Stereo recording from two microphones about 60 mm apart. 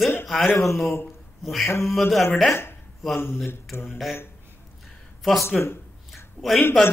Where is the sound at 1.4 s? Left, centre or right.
Centre.